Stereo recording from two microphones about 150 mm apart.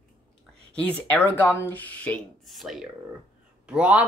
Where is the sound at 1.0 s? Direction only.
10° left (ahead or behind); by 4.0 s 5° right (ahead or behind).